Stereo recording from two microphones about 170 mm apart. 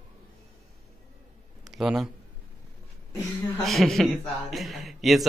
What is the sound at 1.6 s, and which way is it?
Speech, centre (ahead or behind).